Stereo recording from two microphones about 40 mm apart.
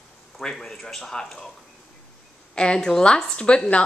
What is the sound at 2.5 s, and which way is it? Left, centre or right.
A woman's voice, left.